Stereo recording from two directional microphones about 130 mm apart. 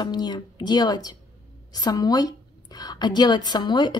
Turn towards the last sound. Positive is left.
turn(degrees=35)  # may be behind; listen again after turning